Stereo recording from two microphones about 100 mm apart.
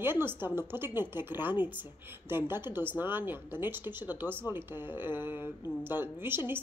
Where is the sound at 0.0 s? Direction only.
20° right (ahead or behind).